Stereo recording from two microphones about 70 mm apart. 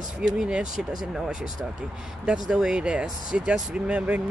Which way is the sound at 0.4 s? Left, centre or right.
Centre.